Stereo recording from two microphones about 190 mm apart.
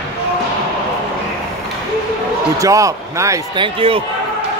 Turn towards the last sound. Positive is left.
turn(degrees=-30)  # may be behind; listen again after turning